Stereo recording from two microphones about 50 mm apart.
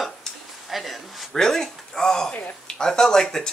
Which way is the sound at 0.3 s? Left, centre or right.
Centre.